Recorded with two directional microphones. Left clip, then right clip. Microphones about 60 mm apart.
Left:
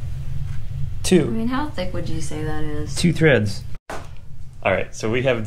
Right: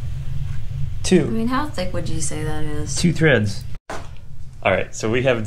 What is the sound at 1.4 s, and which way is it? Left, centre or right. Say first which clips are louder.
Speech: right 2 dB; right.